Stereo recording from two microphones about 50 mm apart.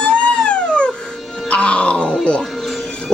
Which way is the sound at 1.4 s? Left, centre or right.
Left.